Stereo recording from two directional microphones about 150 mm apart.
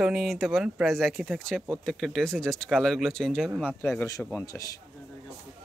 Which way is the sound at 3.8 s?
15° left (ahead or behind).